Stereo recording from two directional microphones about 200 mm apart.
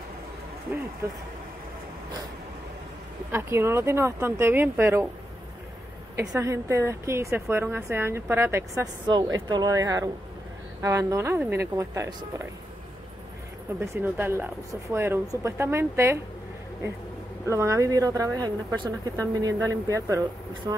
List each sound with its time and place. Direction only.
3.3 s speech: 15° right (ahead or behind)
6.1 s speech: 15° right (ahead or behind)
13.7 s speech: 10° right (ahead or behind)
17.5 s speech: 15° right (ahead or behind)